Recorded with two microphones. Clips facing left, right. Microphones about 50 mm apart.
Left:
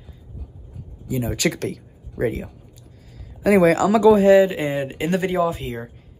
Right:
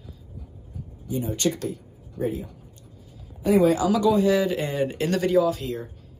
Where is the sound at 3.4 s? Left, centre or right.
Left.